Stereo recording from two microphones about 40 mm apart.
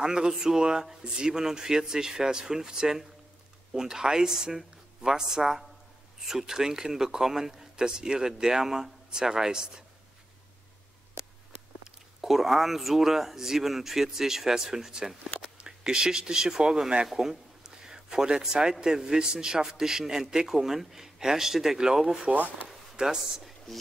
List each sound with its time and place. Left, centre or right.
0.0 s speech: centre
12.2 s speech: centre
17.1 s a sound: centre
18.5 s speech: centre